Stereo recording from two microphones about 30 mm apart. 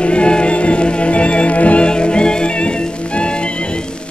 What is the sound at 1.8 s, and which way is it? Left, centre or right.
Music, left.